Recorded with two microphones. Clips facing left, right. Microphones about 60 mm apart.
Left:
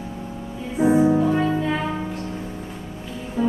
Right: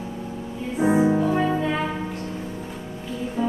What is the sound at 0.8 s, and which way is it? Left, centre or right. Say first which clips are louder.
Music: left 2 dB; centre.